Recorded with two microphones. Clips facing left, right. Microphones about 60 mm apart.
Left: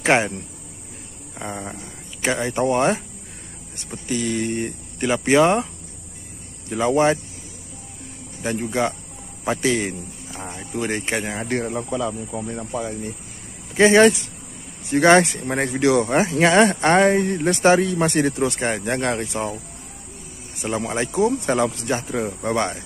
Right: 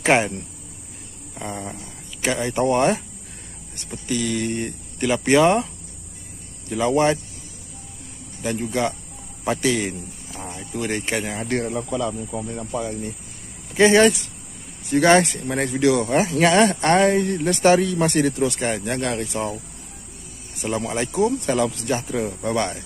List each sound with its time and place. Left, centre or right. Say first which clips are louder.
0.0 s speech: even; centre
1.3 s a sound: even; centre
2.2 s speech: even; centre
3.9 s speech: even; centre
6.7 s speech: left 1 dB; centre
8.6 s speech: left 1 dB; left
10.4 s speech: left 1 dB; left
16.3 s speech: even; centre
18.3 s speech: even; left
19.3 s speech: even; centre
20.7 s speech: left 1 dB; centre
21.3 s speech: left 1 dB; left
22.0 s speech: even; centre
22.4 s speech: left 2 dB; left